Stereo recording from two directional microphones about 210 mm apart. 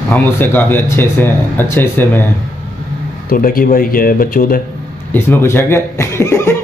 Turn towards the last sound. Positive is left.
turn(degrees=10)  # may be behind; listen again after turning